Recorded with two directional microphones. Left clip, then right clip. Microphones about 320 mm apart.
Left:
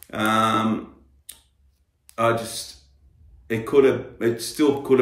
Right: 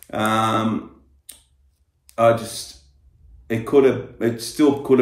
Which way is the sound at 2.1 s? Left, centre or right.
Centre.